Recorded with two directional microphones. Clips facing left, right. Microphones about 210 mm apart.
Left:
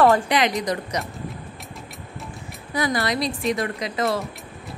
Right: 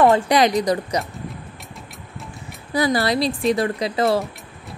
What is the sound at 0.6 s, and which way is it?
Speech, 35° right (ahead or behind).